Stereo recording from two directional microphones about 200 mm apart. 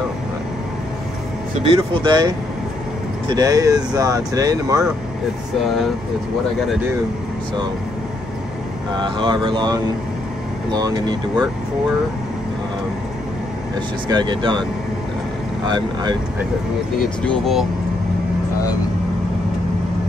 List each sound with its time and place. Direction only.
1.8 s speech: 20° right (ahead or behind)
8.9 s speech: 20° right (ahead or behind)
14.0 s speech: 20° right (ahead or behind)
15.6 s speech: 20° right (ahead or behind)
17.2 s speech: centre (ahead or behind)